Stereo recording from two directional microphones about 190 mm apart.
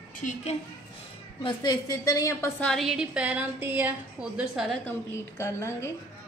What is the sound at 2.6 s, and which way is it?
A woman's voice, centre (ahead or behind).